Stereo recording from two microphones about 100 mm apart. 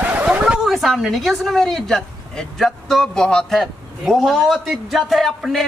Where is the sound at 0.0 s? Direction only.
15° right (ahead or behind).